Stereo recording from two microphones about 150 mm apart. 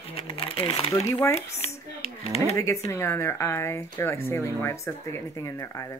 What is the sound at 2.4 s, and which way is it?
Speech, 20° left (ahead or behind).